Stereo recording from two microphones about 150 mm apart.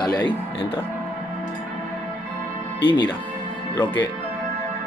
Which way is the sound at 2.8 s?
30° left (ahead or behind).